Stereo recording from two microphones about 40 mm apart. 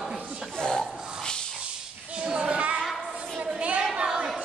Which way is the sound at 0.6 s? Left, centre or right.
Centre.